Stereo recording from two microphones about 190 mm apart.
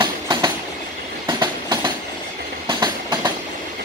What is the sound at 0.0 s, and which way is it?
Train, 25° right (ahead or behind).